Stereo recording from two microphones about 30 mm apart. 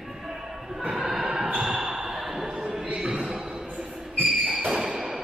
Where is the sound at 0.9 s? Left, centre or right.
Centre.